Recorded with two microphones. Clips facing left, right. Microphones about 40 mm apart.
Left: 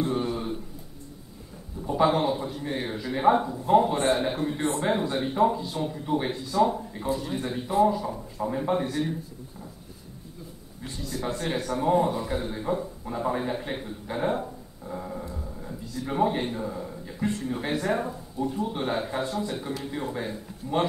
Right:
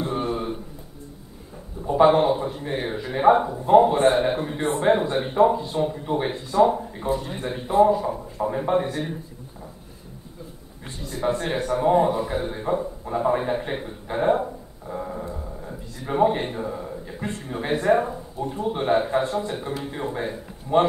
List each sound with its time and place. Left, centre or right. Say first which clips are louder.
0.0 s a sound: right 1 dB; right
1.8 s a sound: right 5 dB; centre
2.0 s a man's voice: right 6 dB; right
6.3 s a man's voice: right 7 dB; right
8.5 s a man's voice: right 4 dB; centre
8.8 s speech: even; right
11.0 s a man's voice: right 6 dB; right
19.6 s speech: right 3 dB; centre